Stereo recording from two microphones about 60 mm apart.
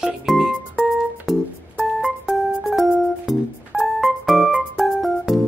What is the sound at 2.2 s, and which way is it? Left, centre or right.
Music, centre.